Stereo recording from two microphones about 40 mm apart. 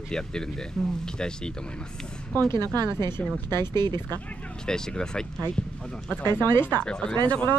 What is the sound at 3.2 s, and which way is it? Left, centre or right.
Speech, left.